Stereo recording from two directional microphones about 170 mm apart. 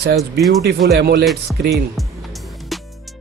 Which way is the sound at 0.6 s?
70° right (ahead or behind).